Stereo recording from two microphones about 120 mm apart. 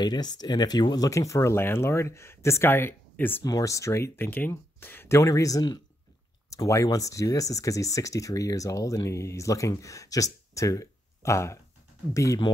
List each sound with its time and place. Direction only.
0.0 s speech: 35° left (ahead or behind); by 3.4 s 15° left (ahead or behind)
3.4 s speech: 30° left (ahead or behind)